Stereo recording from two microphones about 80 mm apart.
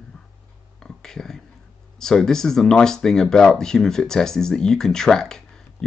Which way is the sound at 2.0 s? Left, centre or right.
Centre.